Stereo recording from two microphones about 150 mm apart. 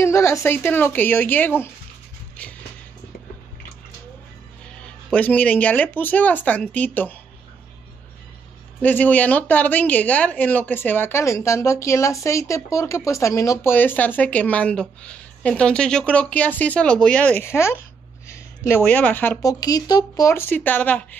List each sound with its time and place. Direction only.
0.0 s speech: 20° left (ahead or behind)
5.1 s speech: 10° left (ahead or behind)
8.8 s speech: 10° left (ahead or behind)
19.4 s speech: 25° left (ahead or behind)